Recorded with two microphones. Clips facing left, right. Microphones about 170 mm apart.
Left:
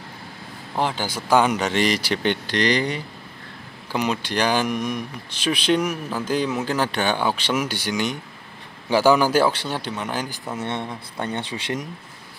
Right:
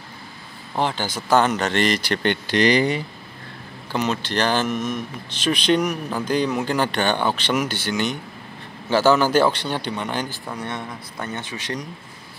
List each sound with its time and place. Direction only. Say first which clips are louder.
0.7 s speech: right 1 dB; 5° left (ahead or behind)
2.4 s speech: right 3 dB; 10° right (ahead or behind)
3.9 s speech: even; 10° left (ahead or behind)
10.5 s speech: left 2 dB; 25° left (ahead or behind)